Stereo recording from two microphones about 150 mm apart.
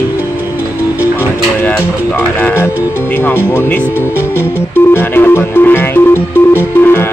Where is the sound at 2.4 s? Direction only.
15° left (ahead or behind).